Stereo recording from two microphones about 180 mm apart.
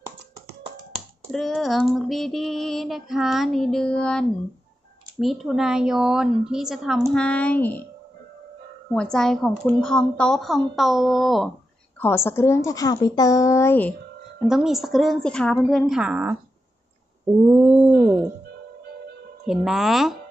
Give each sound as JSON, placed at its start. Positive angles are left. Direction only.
{"t": 0.9, "sound": "female singing", "side_deg": 0}
{"t": 7.1, "sound": "a woman's voice", "side_deg": 5}
{"t": 8.9, "sound": "female singing", "side_deg": 5}
{"t": 12.0, "sound": "a woman's voice", "side_deg": 15}
{"t": 14.5, "sound": "female singing", "side_deg": 0}
{"t": 17.5, "sound": "a sound", "side_deg": -10}
{"t": 19.4, "sound": "female singing", "side_deg": 0}